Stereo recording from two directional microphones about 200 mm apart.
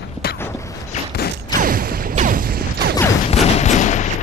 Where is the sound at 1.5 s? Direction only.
45° right (ahead or behind).